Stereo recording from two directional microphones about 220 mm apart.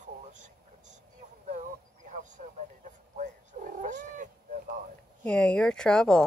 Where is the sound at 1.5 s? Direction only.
35° right (ahead or behind).